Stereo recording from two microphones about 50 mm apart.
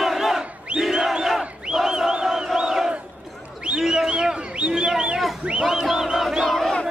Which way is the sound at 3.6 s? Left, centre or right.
Centre.